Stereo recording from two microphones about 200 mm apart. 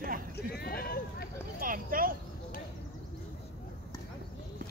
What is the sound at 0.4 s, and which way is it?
Speech, 50° left (ahead or behind).